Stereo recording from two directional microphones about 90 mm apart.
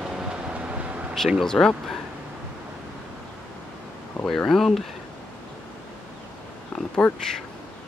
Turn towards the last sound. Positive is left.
turn(degrees=15)  # may be behind; listen again after turning